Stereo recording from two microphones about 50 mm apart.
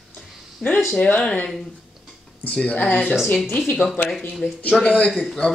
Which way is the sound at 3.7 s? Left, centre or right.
Centre.